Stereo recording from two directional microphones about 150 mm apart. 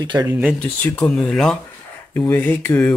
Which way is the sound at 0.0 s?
30° right (ahead or behind).